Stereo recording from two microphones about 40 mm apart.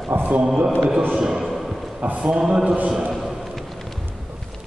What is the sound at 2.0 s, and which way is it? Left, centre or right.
Speech, right.